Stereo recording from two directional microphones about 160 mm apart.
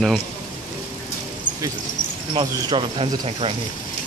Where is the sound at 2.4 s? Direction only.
30° right (ahead or behind).